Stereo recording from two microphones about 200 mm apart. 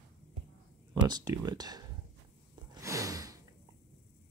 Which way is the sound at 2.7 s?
15° right (ahead or behind).